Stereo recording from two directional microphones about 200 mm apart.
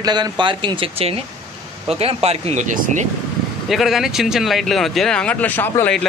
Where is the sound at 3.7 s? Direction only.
Centre (ahead or behind).